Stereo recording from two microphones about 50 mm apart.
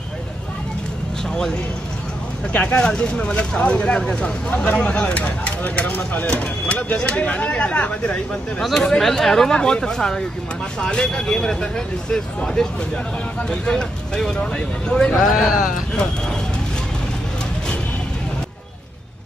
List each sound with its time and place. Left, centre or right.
2.5 s speech: left
6.2 s speech: left
8.5 s speech: centre
15.3 s speech: centre
15.9 s a sound: centre